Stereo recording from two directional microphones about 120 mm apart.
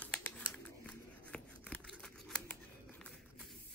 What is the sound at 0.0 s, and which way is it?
Scissors, 10° left (ahead or behind).